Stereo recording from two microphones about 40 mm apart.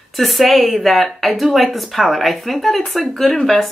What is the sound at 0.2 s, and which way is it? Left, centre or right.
Speech, centre.